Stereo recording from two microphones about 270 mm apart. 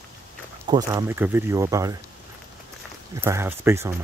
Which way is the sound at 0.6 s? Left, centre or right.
Centre.